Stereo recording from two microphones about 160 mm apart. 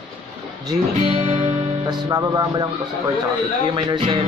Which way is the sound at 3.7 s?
30° right (ahead or behind).